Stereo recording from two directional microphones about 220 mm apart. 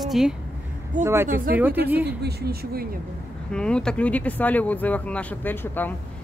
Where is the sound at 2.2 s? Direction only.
45° right (ahead or behind).